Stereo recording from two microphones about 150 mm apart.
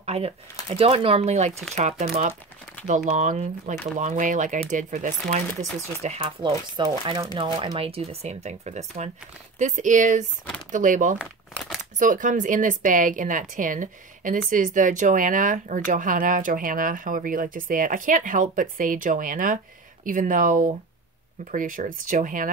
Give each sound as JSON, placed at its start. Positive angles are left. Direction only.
{"t": 0.0, "sound": "a sound", "side_deg": -45}
{"t": 0.7, "sound": "speech", "side_deg": -40}
{"t": 6.0, "sound": "speech", "side_deg": -40}
{"t": 7.7, "sound": "speech", "side_deg": -40}
{"t": 11.5, "sound": "crumpling", "side_deg": 0}
{"t": 12.0, "sound": "speech", "side_deg": -60}